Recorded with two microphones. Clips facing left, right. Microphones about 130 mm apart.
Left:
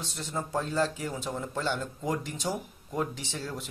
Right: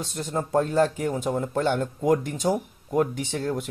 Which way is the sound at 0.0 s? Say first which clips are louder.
Right 6 dB; 50° right (ahead or behind).